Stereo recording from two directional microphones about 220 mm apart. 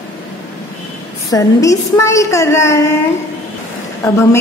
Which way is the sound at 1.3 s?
15° left (ahead or behind).